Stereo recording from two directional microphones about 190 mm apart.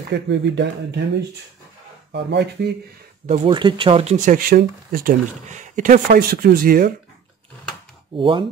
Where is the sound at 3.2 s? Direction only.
35° right (ahead or behind).